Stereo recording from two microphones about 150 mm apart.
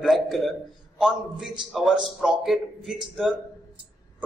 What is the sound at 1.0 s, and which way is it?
A man's voice, centre (ahead or behind).